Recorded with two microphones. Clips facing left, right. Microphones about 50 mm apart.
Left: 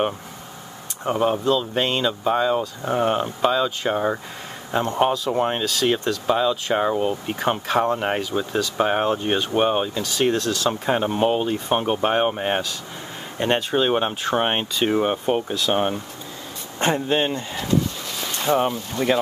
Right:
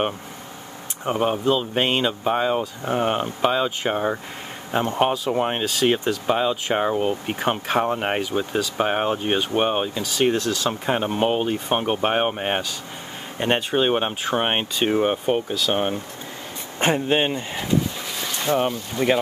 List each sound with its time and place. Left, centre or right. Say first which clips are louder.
1.3 s speech: even; centre
8.5 s speech: left 2 dB; centre
16.8 s speech: right 1 dB; centre
18.2 s a sound: left 2 dB; centre
19.0 s speech: right 1 dB; centre